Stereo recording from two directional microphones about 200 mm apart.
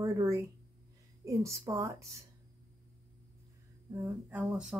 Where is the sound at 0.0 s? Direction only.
15° right (ahead or behind).